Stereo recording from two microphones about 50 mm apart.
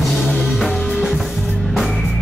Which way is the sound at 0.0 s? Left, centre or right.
Centre.